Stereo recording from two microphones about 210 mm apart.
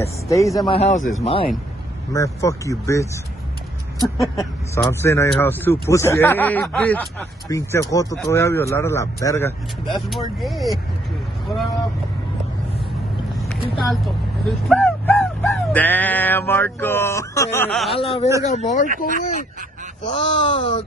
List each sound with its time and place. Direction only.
0.0 s speech: 15° left (ahead or behind)
0.7 s speech: 30° left (ahead or behind)
2.1 s speech: 15° left (ahead or behind)
4.2 s speech: 15° left (ahead or behind)
9.8 s speech: centre (ahead or behind)
13.4 s boat: centre (ahead or behind)
14.7 s music: 5° left (ahead or behind)
17.9 s speech: 25° left (ahead or behind)
20.1 s speech: 25° left (ahead or behind)